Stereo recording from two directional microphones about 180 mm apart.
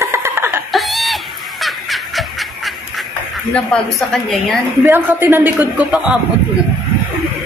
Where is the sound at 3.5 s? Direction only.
5° left (ahead or behind).